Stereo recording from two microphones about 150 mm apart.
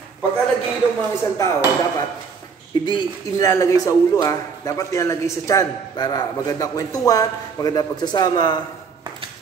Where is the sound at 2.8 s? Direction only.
30° left (ahead or behind).